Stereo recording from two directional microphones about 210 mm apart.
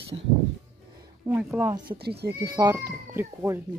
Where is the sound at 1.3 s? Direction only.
5° right (ahead or behind).